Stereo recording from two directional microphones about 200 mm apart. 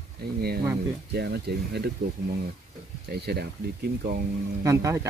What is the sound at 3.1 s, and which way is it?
Speech, 55° right (ahead or behind).